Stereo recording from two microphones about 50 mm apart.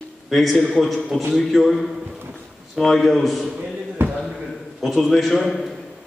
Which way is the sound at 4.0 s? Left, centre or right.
Right.